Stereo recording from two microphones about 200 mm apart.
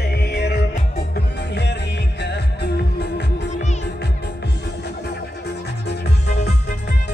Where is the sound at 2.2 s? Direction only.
55° left (ahead or behind).